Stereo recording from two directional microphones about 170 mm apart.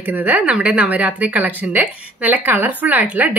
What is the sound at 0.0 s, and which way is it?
A woman's voice, 10° right (ahead or behind).